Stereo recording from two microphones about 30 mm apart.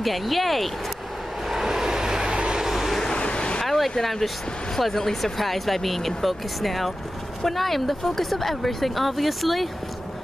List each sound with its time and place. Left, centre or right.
0.0 s speech: centre
1.5 s vehicle: centre
3.2 s vehicle: left
3.6 s a sound: centre
4.0 s speech: centre